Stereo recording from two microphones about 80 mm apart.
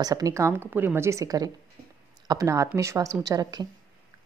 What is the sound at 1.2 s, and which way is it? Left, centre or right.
A woman's voice, right.